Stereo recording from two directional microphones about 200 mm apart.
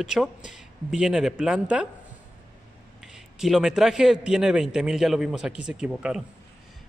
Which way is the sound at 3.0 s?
Centre (ahead or behind).